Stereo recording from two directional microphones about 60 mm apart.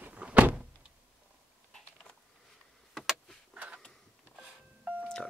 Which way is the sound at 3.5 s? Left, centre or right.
Right.